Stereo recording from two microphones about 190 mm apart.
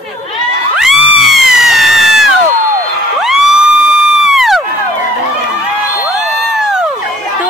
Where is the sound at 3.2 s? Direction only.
5° right (ahead or behind).